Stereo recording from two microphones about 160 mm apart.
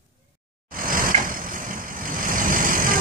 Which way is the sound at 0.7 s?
60° right (ahead or behind).